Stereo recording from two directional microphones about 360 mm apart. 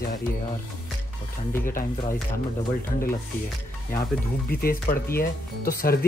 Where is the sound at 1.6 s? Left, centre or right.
Left.